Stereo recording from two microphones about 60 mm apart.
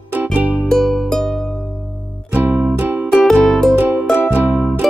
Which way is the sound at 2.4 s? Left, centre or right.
Right.